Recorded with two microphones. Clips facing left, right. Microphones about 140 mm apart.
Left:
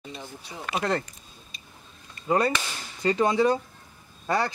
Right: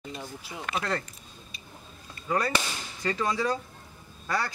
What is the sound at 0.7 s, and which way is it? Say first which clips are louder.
Speech: left 4 dB; 25° left (ahead or behind).